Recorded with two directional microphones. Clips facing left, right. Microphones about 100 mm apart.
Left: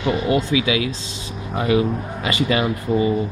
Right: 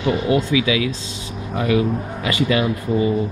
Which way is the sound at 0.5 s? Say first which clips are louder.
Right 1 dB; 30° left (ahead or behind).